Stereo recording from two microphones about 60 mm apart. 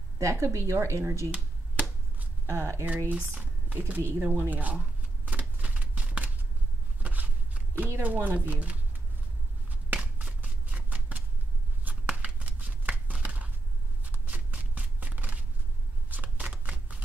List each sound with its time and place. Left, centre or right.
0.2 s speech: right
1.3 s finger snapping: right
2.4 s speech: right
3.1 s speech: right
4.2 s a sound: right
8.0 s speech: right
10.4 s a sound: right
11.8 s shuffling cards: right
13.1 s chopping: right
14.0 s shuffling cards: right